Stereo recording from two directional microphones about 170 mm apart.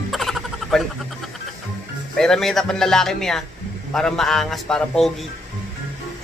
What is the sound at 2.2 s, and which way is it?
A man's voice, 5° left (ahead or behind).